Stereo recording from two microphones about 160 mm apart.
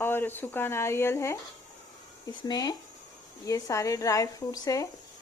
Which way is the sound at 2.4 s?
25° left (ahead or behind).